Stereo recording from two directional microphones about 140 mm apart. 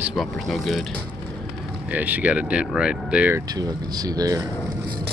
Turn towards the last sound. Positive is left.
turn(degrees=-25)  # may be behind; listen again after turning